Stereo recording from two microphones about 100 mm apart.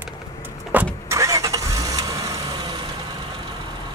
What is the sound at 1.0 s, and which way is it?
Vehicle, 30° right (ahead or behind).